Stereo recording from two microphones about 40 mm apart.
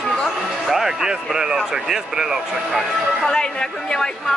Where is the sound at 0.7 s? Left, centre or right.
Centre.